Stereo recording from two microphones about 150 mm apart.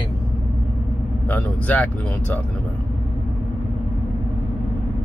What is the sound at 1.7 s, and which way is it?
Speech, 10° left (ahead or behind).